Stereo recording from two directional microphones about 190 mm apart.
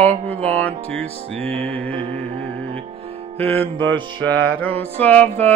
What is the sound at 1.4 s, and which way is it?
Music, 30° right (ahead or behind).